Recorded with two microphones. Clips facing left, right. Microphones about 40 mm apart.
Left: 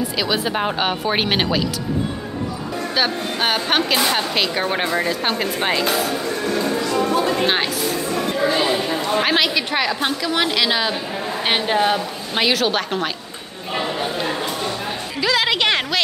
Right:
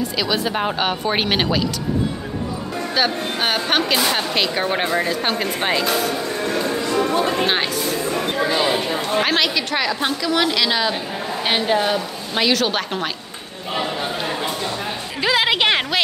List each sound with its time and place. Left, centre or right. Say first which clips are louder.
0.2 s speech: even; centre
3.0 s speech: even; centre
6.9 s music: right 1 dB; right
7.3 s speech: even; centre
8.6 s a sound: even; centre
9.2 s a woman's voice: left 1 dB; centre
15.2 s a woman's voice: right 1 dB; centre